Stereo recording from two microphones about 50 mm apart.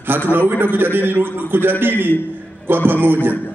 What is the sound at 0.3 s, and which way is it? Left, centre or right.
A man's voice, right.